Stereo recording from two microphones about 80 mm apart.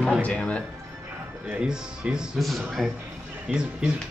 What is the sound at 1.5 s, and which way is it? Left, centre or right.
A man's voice, centre.